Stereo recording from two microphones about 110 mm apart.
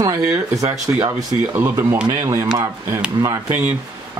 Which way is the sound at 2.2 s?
30° right (ahead or behind).